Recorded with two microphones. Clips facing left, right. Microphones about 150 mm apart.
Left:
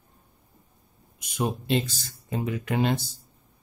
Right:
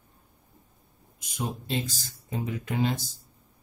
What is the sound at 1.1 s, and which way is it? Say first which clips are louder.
Speech: left 5 dB; 65° left (ahead or behind).